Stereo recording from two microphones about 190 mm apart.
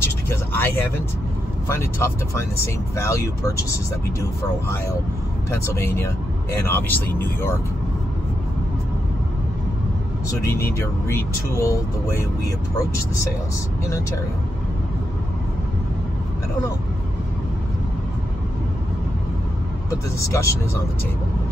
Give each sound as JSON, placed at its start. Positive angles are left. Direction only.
{"t": 0.0, "sound": "vehicle", "side_deg": 10}
{"t": 1.7, "sound": "speech", "side_deg": 15}
{"t": 5.5, "sound": "speech", "side_deg": 15}
{"t": 10.4, "sound": "speech", "side_deg": 15}
{"t": 20.2, "sound": "speech", "side_deg": 15}